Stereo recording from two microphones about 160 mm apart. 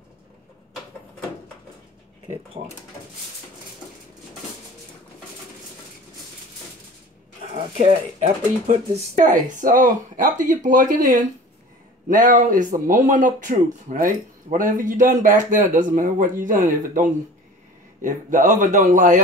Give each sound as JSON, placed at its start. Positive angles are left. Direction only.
{"t": 7.7, "sound": "a man's voice", "side_deg": -45}
{"t": 9.1, "sound": "speech", "side_deg": -55}
{"t": 18.0, "sound": "a man's voice", "side_deg": -55}